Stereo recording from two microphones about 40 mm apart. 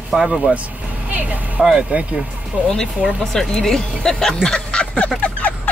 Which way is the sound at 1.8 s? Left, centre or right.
Right.